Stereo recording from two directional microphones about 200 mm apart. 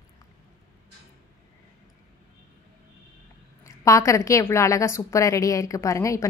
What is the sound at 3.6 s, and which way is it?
A woman's voice, 15° left (ahead or behind).